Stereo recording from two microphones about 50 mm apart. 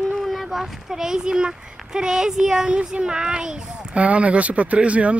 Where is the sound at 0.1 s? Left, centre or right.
Centre.